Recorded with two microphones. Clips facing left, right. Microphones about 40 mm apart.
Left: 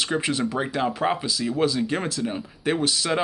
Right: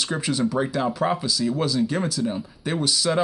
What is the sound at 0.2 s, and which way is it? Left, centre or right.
Speech, left.